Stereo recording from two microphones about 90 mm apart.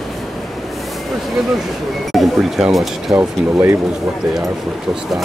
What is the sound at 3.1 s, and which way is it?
Speech, 25° right (ahead or behind).